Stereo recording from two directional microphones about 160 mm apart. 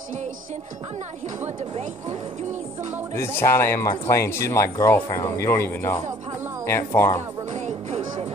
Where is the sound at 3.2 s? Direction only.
15° left (ahead or behind).